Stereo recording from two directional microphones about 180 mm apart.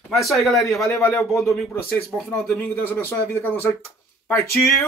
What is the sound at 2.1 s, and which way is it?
Speech, centre (ahead or behind).